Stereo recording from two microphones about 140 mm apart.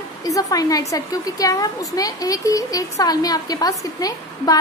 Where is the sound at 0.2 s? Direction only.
25° left (ahead or behind).